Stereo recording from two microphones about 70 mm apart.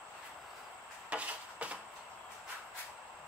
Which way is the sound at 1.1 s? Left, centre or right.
Centre.